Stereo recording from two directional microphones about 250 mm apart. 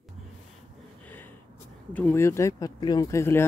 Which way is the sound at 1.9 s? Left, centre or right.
Centre.